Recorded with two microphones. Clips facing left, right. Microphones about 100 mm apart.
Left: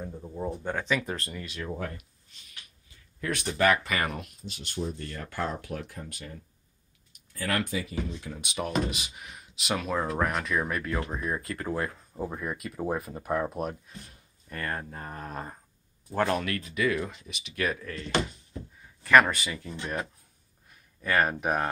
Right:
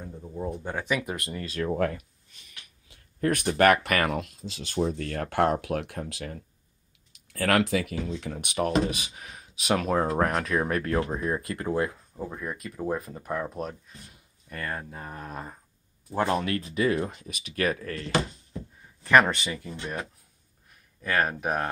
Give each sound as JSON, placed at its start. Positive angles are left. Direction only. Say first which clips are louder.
{"t": 0.0, "sound": "speech", "louder": "even", "side_deg": 5}
{"t": 1.3, "sound": "speech", "louder": "right 4 dB", "side_deg": -35}
{"t": 3.2, "sound": "speech", "louder": "right 5 dB", "side_deg": -50}
{"t": 11.1, "sound": "speech", "louder": "right 3 dB", "side_deg": -25}
{"t": 12.2, "sound": "speech", "louder": "left 1 dB", "side_deg": 10}
{"t": 16.2, "sound": "speech", "louder": "right 1 dB", "side_deg": -20}
{"t": 19.0, "sound": "speech", "louder": "even", "side_deg": -20}
{"t": 19.8, "sound": "speech", "louder": "left 1 dB", "side_deg": 0}